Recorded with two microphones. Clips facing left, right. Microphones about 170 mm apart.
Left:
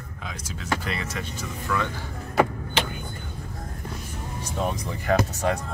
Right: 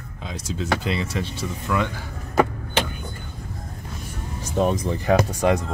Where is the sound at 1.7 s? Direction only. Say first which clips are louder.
Right 3 dB; 10° right (ahead or behind).